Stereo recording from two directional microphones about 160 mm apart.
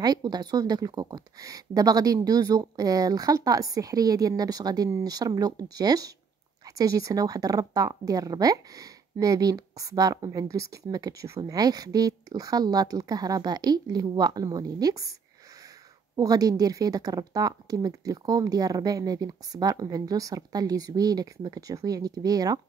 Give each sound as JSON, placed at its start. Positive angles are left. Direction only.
{"t": 0.0, "sound": "speech", "side_deg": -25}
{"t": 16.2, "sound": "speech", "side_deg": -25}